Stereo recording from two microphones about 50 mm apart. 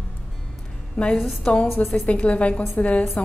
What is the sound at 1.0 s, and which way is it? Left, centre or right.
A woman's voice, centre.